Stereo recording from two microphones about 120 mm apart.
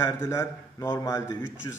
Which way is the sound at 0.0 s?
25° left (ahead or behind).